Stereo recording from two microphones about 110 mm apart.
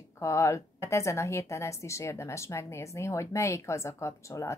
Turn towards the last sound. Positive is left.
turn(degrees=25)  # may be behind; listen again after turning